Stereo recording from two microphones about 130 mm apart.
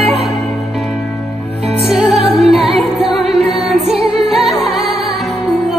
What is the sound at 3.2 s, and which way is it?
Music, 50° right (ahead or behind).